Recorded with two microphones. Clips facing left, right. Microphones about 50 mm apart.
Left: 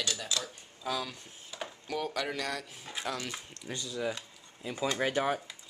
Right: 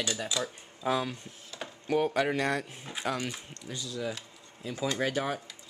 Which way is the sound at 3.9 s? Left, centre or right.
Centre.